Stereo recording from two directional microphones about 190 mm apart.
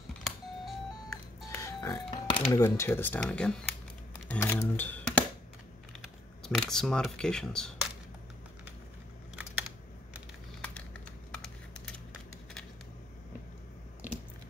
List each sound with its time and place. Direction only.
0.2 s music: centre (ahead or behind)
1.5 s music: 15° left (ahead or behind)
2.0 s music: 30° left (ahead or behind)
2.5 s speech: 15° left (ahead or behind)
4.3 s a sound: 15° left (ahead or behind)
6.4 s speech: 5° left (ahead or behind)
10.6 s typing: 5° left (ahead or behind)